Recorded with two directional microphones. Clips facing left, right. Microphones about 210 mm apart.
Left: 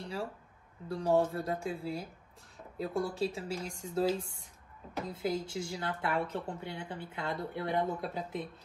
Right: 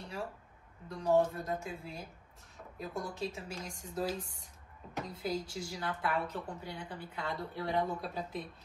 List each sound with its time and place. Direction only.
0.8 s speech: 30° left (ahead or behind)